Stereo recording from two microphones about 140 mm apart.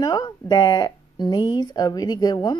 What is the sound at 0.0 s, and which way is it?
Speech, 25° left (ahead or behind).